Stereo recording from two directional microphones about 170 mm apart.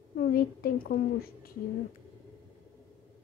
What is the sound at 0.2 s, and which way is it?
A woman's voice, 60° left (ahead or behind).